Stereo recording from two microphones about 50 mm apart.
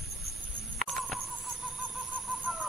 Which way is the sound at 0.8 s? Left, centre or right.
Centre.